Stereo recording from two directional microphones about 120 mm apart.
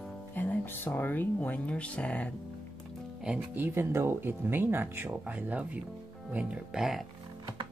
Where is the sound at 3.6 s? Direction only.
20° right (ahead or behind); by 7.1 s 5° right (ahead or behind).